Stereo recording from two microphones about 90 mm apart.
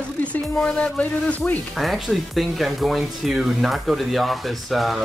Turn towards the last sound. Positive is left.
turn(degrees=0)  # may be behind; listen again after turning